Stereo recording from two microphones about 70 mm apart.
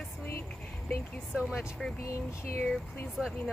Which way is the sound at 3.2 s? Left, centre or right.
Centre.